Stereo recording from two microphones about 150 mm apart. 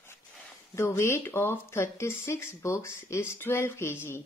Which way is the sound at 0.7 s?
20° left (ahead or behind).